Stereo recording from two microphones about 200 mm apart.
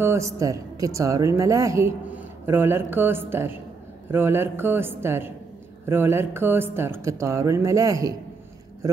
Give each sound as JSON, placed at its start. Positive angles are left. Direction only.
{"t": 0.0, "sound": "a woman's voice", "side_deg": -15}